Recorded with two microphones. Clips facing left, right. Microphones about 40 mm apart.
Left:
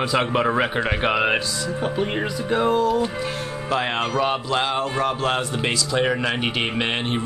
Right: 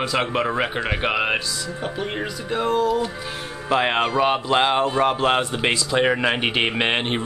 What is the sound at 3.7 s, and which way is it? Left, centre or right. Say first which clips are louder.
A man's voice: right 3 dB; centre.